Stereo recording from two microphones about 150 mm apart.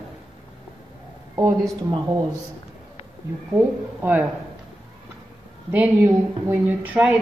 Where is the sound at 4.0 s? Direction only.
10° right (ahead or behind).